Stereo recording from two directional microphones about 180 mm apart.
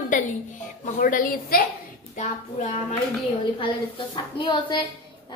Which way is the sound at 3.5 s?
25° left (ahead or behind).